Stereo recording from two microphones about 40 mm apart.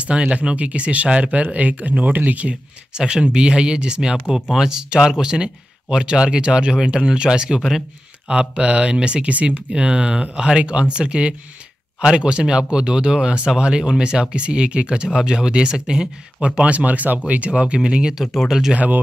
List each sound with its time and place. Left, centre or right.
0.0 s speech: right
1.4 s speech: right
2.9 s speech: right
4.3 s speech: centre
4.8 s speech: right
9.7 s speech: right
18.1 s speech: centre